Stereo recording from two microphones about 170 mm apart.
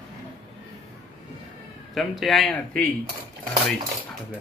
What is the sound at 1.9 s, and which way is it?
Speech, centre (ahead or behind).